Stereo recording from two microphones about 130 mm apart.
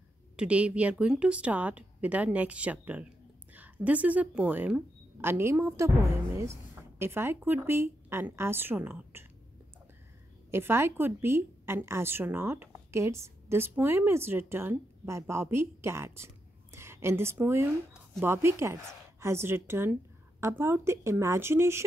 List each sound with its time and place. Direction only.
0.4 s a woman's voice: 10° right (ahead or behind)
10.5 s a woman's voice: 20° right (ahead or behind)